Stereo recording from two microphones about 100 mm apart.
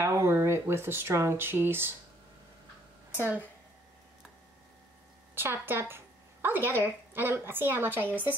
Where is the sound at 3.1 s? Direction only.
15° right (ahead or behind).